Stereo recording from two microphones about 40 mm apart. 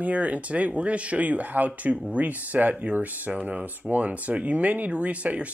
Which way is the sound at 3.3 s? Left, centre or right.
Right.